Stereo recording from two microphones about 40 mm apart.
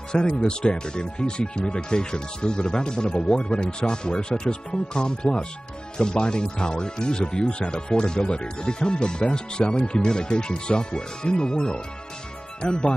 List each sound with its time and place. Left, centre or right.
0.1 s speech: left